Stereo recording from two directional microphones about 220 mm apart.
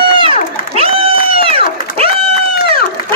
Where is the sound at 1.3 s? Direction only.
25° right (ahead or behind).